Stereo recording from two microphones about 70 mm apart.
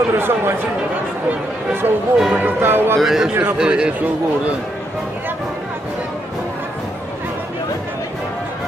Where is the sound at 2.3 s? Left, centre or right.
Right.